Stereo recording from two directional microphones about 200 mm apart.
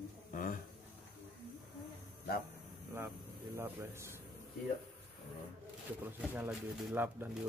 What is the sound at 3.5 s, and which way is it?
Speech, 10° right (ahead or behind).